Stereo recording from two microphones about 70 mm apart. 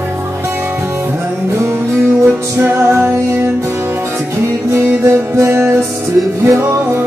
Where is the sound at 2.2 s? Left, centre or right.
Right.